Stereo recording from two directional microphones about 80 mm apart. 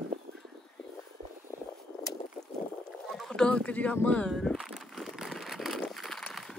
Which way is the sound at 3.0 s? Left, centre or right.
Centre.